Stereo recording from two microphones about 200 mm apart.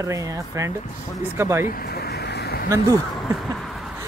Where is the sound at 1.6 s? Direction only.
45° left (ahead or behind).